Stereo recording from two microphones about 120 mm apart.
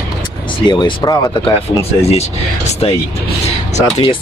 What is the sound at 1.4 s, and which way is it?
Speech, 50° left (ahead or behind).